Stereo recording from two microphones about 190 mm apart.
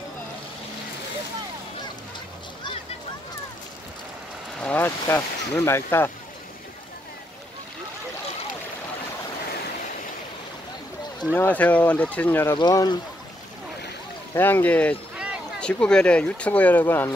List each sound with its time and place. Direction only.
4.6 s speech: 5° left (ahead or behind)
11.3 s speech: 10° left (ahead or behind)
12.5 s speech: 20° left (ahead or behind)
14.3 s speech: 10° left (ahead or behind)